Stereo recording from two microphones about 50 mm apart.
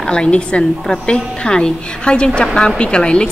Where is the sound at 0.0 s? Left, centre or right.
Centre.